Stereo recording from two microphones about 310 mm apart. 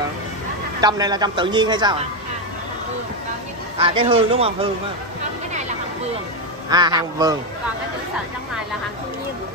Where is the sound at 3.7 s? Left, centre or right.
Centre.